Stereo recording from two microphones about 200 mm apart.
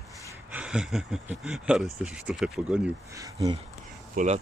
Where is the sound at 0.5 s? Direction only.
5° right (ahead or behind).